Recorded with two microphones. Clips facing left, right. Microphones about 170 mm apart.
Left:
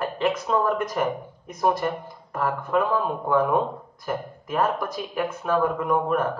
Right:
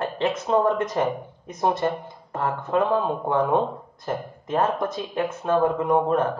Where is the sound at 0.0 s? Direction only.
25° right (ahead or behind).